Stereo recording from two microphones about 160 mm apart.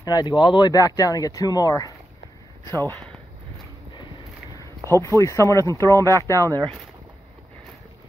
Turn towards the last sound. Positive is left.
turn(degrees=20)  # may be behind; listen again after turning